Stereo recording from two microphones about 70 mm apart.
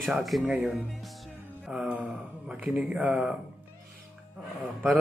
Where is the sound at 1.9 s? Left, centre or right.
Right.